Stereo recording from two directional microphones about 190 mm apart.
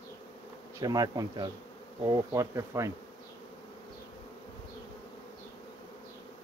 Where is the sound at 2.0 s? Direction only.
15° right (ahead or behind).